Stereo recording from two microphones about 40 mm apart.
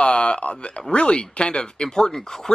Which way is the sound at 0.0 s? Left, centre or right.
Left.